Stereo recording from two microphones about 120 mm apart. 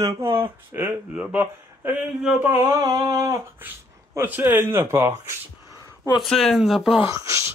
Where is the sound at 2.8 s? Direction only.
30° right (ahead or behind).